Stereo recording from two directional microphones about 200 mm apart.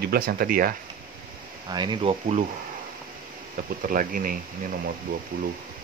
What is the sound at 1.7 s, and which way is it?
Speech, 20° right (ahead or behind).